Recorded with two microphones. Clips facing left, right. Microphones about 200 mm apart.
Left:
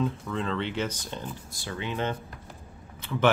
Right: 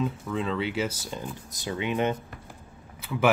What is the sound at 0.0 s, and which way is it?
Speech, 5° right (ahead or behind).